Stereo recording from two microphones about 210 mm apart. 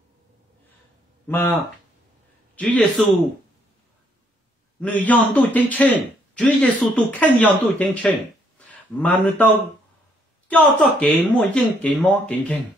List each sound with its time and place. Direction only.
1.2 s a man's voice: 10° left (ahead or behind)
4.7 s speech: 5° left (ahead or behind)
10.5 s speech: 5° left (ahead or behind)